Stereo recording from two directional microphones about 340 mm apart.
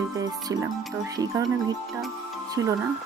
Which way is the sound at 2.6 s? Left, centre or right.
Right.